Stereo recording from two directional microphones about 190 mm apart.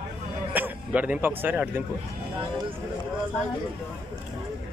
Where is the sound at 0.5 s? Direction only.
10° right (ahead or behind).